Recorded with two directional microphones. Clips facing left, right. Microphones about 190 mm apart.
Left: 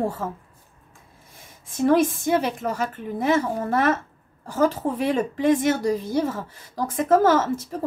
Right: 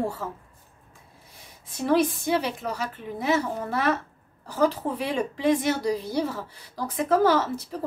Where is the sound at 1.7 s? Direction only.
50° left (ahead or behind).